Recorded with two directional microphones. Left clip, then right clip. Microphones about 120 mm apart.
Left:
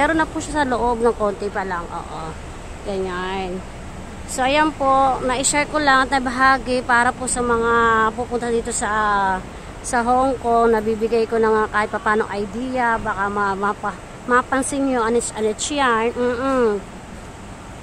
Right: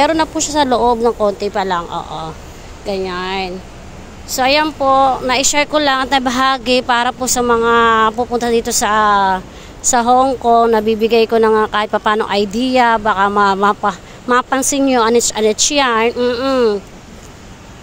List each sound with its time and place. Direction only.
0.0 s speech: 20° right (ahead or behind)
2.0 s speech: 10° right (ahead or behind)
5.2 s speech: 30° right (ahead or behind)
16.2 s speech: 10° right (ahead or behind)